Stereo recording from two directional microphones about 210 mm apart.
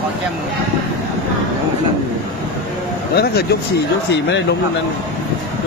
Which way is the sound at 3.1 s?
50° left (ahead or behind).